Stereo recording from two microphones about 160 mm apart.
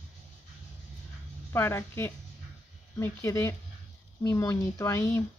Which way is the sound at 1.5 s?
15° left (ahead or behind).